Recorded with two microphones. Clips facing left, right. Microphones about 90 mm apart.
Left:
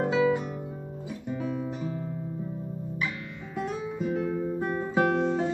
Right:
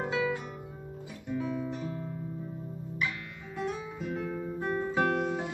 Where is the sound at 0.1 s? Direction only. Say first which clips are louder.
Left 7 dB; 15° left (ahead or behind).